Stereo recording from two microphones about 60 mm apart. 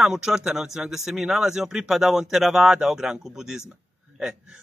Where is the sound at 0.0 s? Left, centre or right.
Centre.